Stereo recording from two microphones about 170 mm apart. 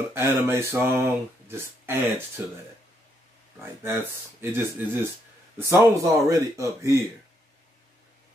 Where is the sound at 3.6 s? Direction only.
15° right (ahead or behind).